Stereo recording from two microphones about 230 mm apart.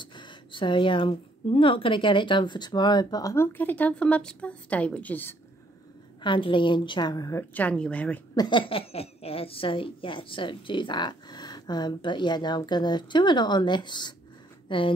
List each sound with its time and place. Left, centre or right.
0.0 s a woman's voice: centre
6.2 s a woman's voice: left
8.4 s a woman's voice: left